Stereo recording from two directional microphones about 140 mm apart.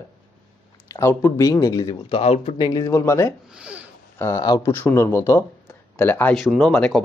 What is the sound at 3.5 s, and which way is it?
Speech, 10° right (ahead or behind).